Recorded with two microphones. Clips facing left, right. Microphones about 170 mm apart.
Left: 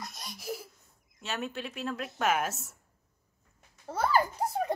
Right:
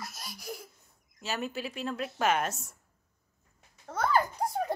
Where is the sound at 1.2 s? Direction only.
Centre (ahead or behind).